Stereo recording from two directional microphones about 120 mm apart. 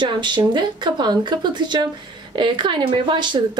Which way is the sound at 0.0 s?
40° right (ahead or behind).